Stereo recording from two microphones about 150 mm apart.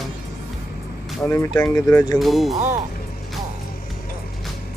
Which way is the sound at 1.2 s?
15° left (ahead or behind).